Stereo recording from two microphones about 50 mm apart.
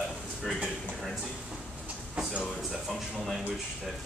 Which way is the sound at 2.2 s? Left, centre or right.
Centre.